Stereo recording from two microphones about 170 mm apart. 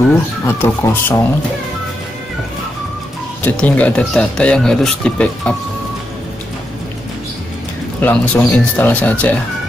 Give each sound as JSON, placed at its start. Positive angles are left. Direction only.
{"t": 0.5, "sound": "speech", "side_deg": 15}
{"t": 3.4, "sound": "speech", "side_deg": 10}
{"t": 8.0, "sound": "speech", "side_deg": 10}